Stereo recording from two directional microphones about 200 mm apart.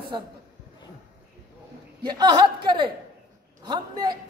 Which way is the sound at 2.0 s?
20° right (ahead or behind).